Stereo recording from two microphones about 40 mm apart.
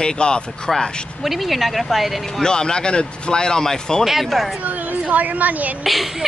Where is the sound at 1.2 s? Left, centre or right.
Centre.